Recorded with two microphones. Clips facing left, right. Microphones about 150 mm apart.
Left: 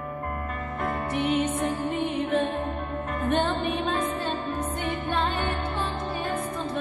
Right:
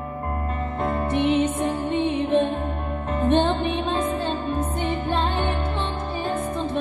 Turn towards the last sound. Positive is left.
turn(degrees=-25)  # may be behind; listen again after turning